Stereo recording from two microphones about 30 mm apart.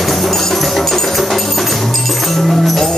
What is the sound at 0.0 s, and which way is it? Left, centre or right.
Music, centre.